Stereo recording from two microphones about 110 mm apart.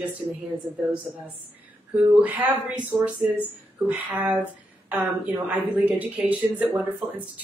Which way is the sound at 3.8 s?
15° right (ahead or behind).